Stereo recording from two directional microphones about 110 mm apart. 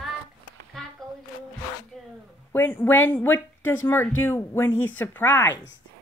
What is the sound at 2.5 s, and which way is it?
Speech, 20° left (ahead or behind).